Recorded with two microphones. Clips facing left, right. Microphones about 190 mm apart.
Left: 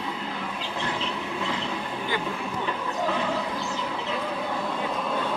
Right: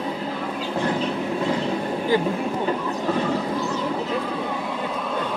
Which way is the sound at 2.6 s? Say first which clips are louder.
Right 5 dB; 40° right (ahead or behind).